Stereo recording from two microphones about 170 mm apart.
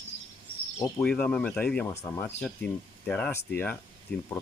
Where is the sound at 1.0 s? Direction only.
10° left (ahead or behind).